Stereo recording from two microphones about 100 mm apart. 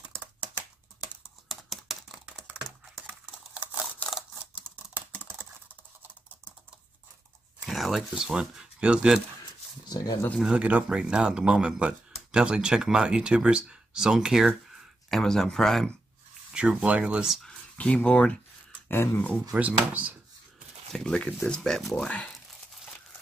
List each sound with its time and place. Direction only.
1.5 s computer keyboard: centre (ahead or behind)
4.9 s computer keyboard: 20° right (ahead or behind)
7.6 s a sound: centre (ahead or behind)
8.2 s speech: 5° right (ahead or behind)
9.8 s speech: 40° left (ahead or behind)
10.4 s speech: 10° right (ahead or behind); by 15.9 s 5° left (ahead or behind)
16.5 s speech: 10° right (ahead or behind)
17.4 s speech: 10° left (ahead or behind)
18.9 s speech: 20° left (ahead or behind)
19.5 s speech: 15° right (ahead or behind)
20.9 s speech: 5° left (ahead or behind)